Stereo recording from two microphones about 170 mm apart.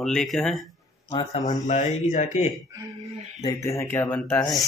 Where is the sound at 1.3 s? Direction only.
45° left (ahead or behind).